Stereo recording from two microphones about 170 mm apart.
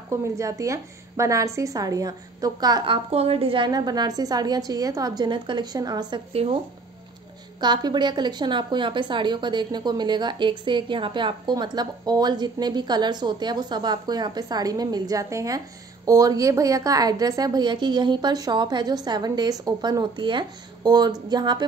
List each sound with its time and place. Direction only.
0.1 s a woman's voice: 15° right (ahead or behind); by 6.6 s 35° right (ahead or behind)
7.6 s a woman's voice: 25° right (ahead or behind)